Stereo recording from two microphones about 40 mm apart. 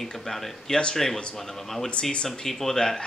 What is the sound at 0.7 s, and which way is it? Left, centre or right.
Speech, left.